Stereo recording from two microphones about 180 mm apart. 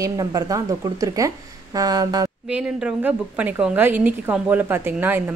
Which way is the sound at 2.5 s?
5° right (ahead or behind).